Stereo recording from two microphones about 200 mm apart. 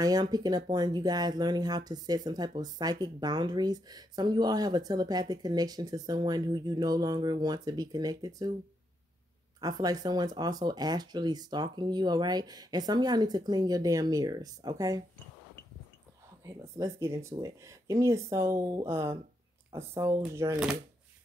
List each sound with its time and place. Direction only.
0.0 s speech: 20° right (ahead or behind)
9.6 s speech: 20° right (ahead or behind)
16.4 s speech: 15° right (ahead or behind)